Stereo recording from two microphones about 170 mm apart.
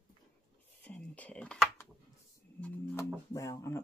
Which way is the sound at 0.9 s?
10° left (ahead or behind).